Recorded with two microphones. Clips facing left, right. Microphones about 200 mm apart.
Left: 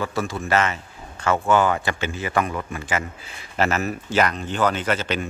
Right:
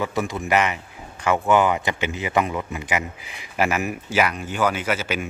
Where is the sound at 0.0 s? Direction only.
20° right (ahead or behind).